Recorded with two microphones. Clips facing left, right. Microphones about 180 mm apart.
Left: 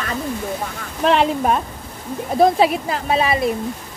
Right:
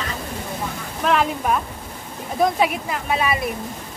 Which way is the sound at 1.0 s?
30° left (ahead or behind).